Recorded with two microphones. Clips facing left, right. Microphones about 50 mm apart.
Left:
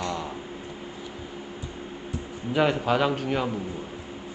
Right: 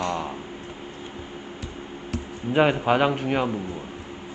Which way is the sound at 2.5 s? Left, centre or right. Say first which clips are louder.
Right 3 dB; right.